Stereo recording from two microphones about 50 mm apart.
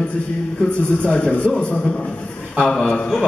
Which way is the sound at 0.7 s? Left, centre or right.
Left.